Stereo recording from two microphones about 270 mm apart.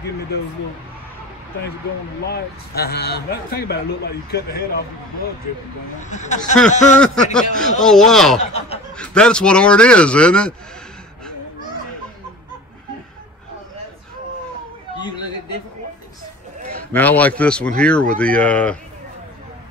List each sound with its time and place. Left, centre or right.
2.2 s speech: left
6.0 s speech: left
7.3 s speech: centre
16.9 s speech: centre